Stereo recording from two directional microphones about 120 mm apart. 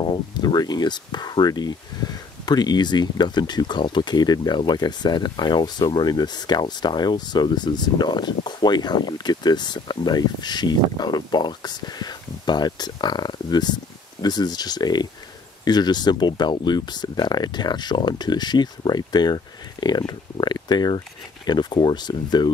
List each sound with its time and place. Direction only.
0.0 s speech: 40° left (ahead or behind)